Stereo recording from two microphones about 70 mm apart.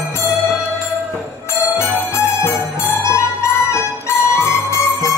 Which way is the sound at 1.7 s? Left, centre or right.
Left.